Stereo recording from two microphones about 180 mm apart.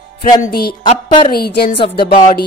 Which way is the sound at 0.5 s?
55° left (ahead or behind).